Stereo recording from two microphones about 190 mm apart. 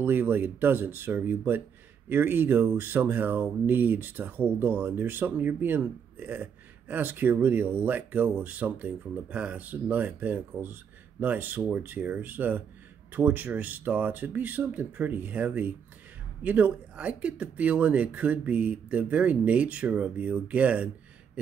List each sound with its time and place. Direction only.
0.0 s speech: 10° right (ahead or behind)